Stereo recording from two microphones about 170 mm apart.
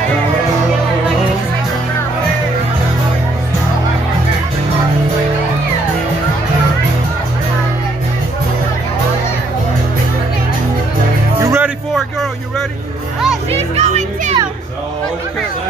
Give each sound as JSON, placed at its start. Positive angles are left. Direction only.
{"t": 11.3, "sound": "music", "side_deg": -15}
{"t": 11.9, "sound": "a sound", "side_deg": 0}
{"t": 13.5, "sound": "music", "side_deg": -40}